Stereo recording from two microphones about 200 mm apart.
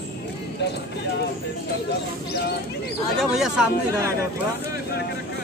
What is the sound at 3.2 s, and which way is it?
Speech, centre (ahead or behind).